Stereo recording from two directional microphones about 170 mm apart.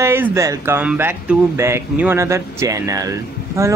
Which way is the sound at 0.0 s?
15° right (ahead or behind).